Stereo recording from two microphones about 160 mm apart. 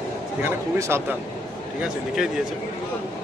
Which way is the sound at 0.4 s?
15° right (ahead or behind).